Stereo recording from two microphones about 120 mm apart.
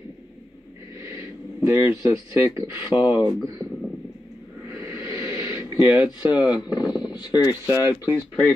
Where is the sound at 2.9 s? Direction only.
40° left (ahead or behind).